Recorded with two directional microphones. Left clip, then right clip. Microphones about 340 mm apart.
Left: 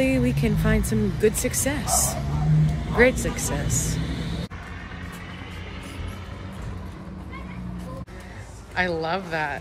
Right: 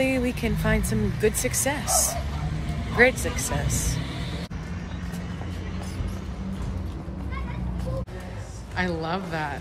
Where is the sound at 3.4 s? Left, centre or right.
Centre.